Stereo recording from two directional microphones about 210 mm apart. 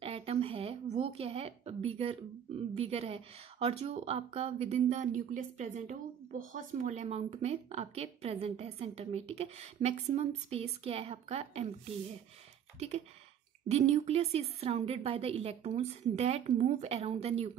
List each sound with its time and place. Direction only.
0.0 s a woman's voice: 25° right (ahead or behind)
12.7 s a woman's voice: 30° right (ahead or behind)